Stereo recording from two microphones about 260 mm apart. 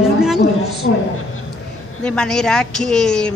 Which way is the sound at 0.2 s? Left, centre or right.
Centre.